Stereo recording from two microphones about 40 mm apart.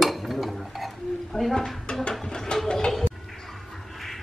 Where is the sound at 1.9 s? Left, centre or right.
Left.